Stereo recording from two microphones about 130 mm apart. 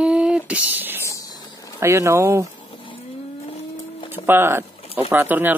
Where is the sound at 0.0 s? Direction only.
10° right (ahead or behind).